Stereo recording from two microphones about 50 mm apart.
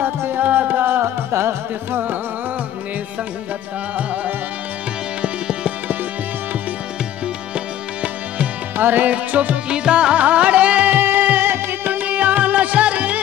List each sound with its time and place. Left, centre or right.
0.0 s music: right
0.4 s music: right
1.0 s music: right
5.2 s music: right
7.5 s music: right
8.7 s music: right
10.9 s music: right
12.0 s music: right